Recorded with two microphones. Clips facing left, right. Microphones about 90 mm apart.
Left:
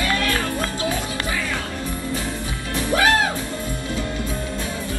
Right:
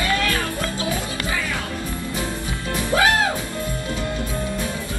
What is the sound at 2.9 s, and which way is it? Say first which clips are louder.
Music: even; 20° right (ahead or behind).